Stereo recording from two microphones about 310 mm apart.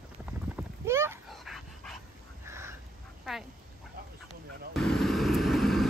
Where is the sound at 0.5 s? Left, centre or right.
Centre.